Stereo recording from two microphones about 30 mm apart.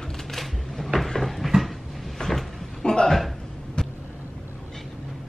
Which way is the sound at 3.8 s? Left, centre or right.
Left.